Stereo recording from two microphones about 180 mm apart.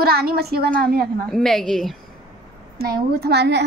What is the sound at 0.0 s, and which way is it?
A woman's voice, 60° right (ahead or behind).